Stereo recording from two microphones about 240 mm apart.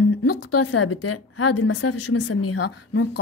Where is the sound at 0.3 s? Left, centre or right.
Left.